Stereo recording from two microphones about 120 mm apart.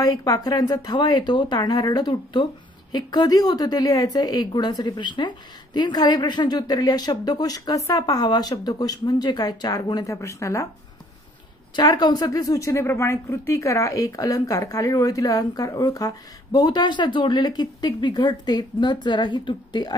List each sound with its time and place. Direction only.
0.0 s a woman's voice: 30° left (ahead or behind)
11.7 s a woman's voice: 40° left (ahead or behind)